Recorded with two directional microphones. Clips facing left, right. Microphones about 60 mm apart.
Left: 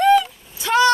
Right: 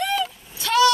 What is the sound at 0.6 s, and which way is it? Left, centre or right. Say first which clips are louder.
Vehicle: left 1 dB; left.